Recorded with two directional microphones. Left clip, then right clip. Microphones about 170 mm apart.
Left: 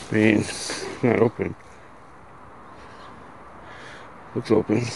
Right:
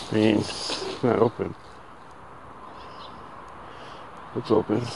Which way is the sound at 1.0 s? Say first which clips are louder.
Left 2 dB; 25° left (ahead or behind).